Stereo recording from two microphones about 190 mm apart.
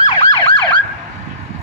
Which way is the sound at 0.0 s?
20° left (ahead or behind).